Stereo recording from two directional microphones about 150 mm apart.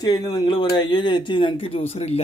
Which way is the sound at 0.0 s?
25° left (ahead or behind).